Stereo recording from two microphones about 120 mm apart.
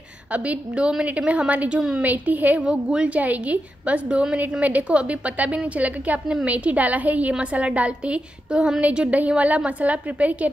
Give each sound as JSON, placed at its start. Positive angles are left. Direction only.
{"t": 0.3, "sound": "a woman's voice", "side_deg": -10}